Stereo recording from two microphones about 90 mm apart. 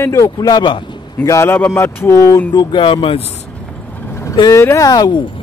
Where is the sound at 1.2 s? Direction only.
30° left (ahead or behind).